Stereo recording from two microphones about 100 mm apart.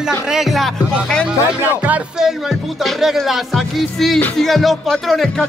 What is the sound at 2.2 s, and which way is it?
Music, 5° right (ahead or behind).